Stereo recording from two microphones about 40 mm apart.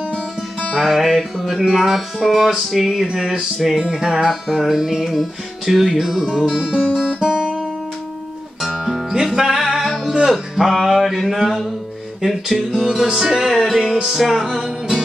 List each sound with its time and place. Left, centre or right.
0.8 s music: centre
7.0 s guitar: centre
8.5 s music: centre
9.8 s music: centre
10.2 s speech: centre
10.7 s music: centre